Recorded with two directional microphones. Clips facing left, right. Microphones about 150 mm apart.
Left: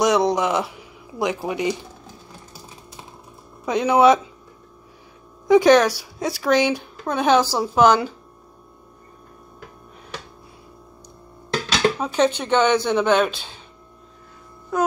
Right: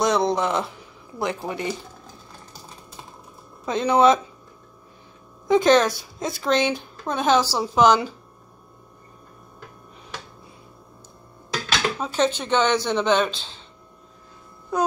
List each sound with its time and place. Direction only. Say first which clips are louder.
0.0 s speech: left 2 dB; 15° left (ahead or behind)
3.6 s speech: left 2 dB; 15° left (ahead or behind)
5.5 s speech: left 3 dB; 10° left (ahead or behind)
12.0 s speech: left 3 dB; 15° left (ahead or behind)